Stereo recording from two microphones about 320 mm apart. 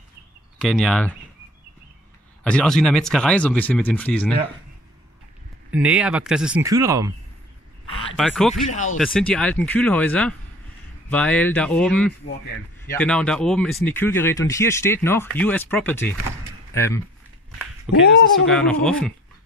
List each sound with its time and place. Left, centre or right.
0.6 s speech: centre
2.4 s speech: centre
5.7 s speech: centre
8.2 s speech: centre
8.6 s speech: left
8.9 s speech: centre
18.0 s speech: left
18.5 s speech: centre